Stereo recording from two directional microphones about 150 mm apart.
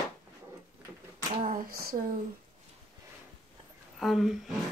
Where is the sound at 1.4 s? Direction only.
75° right (ahead or behind).